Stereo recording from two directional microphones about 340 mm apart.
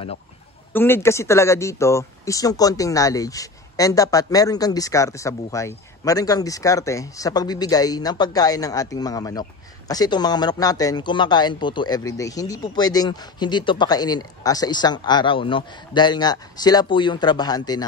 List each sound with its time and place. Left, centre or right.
0.7 s speech: centre